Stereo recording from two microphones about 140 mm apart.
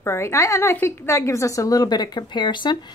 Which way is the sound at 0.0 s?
20° left (ahead or behind).